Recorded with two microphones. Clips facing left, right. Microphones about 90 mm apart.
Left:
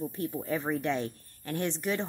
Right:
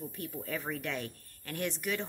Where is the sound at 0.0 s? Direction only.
25° left (ahead or behind).